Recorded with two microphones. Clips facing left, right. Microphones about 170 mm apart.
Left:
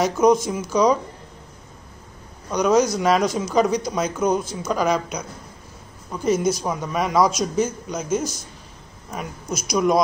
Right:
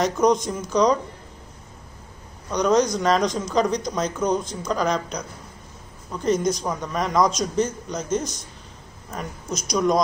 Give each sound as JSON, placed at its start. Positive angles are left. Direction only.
{"t": 0.0, "sound": "a man's voice", "side_deg": 5}
{"t": 2.5, "sound": "a man's voice", "side_deg": 5}